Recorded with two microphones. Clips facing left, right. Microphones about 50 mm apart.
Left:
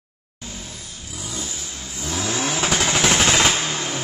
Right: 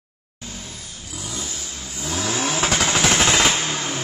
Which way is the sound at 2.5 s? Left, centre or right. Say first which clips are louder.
Even; centre.